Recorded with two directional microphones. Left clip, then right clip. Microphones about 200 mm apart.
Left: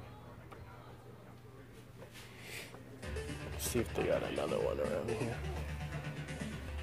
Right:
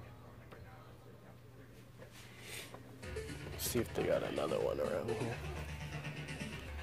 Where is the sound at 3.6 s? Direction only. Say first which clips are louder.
Left 1 dB; 15° right (ahead or behind).